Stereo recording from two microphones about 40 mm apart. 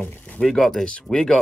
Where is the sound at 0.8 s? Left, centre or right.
Centre.